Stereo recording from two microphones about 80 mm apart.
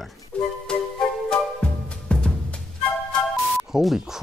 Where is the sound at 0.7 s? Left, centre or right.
Centre.